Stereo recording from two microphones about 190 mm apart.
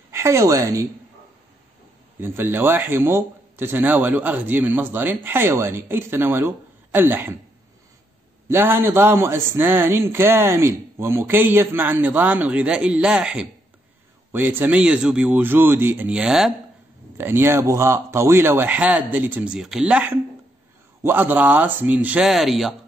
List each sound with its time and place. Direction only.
0.1 s a woman's voice: 15° right (ahead or behind)
2.1 s a man's voice: 10° right (ahead or behind)
8.5 s a man's voice: 10° right (ahead or behind)